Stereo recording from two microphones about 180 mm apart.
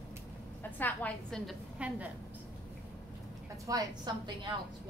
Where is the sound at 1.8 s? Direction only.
5° right (ahead or behind).